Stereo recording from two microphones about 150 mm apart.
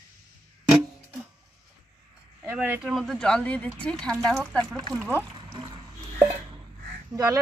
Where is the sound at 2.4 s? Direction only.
10° right (ahead or behind).